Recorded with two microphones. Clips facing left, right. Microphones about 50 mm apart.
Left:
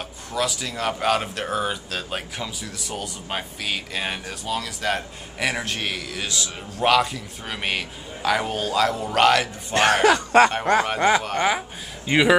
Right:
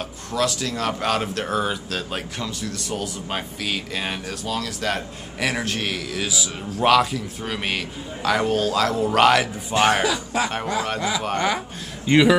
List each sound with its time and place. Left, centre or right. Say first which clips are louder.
0.0 s speech: right 2 dB; centre
10.0 s speech: left 8 dB; left
11.0 s speech: left 6 dB; left
11.3 s speech: left 1 dB; centre